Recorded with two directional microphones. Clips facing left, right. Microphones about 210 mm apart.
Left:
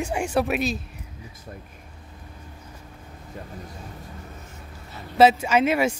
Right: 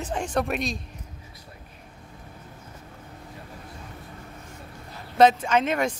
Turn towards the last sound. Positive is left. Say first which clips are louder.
# left 3 dB
turn(degrees=10)  # may be behind; listen again after turning